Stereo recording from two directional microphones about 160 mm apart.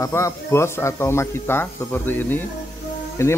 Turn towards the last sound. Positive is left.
turn(degrees=15)  # may be behind; listen again after turning